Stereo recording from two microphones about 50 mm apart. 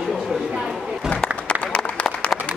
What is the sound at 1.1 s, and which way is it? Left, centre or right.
Applause, left.